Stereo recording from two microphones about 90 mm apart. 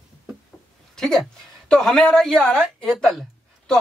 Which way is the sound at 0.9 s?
5° left (ahead or behind).